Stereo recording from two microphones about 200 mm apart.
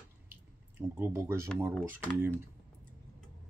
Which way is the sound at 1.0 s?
15° right (ahead or behind).